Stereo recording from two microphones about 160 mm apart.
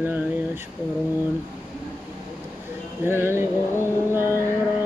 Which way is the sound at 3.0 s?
15° right (ahead or behind).